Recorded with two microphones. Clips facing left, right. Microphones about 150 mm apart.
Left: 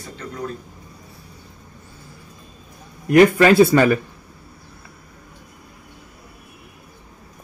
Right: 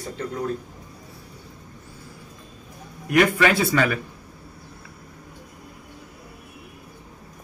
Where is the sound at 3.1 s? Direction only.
40° left (ahead or behind).